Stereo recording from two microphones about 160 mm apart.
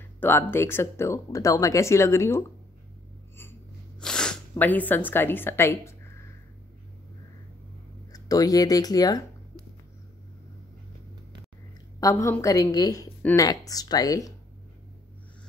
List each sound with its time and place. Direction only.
0.2 s speech: 15° left (ahead or behind)
4.0 s speech: 5° left (ahead or behind)
8.1 s speech: 20° left (ahead or behind)
12.0 s a woman's voice: 20° left (ahead or behind)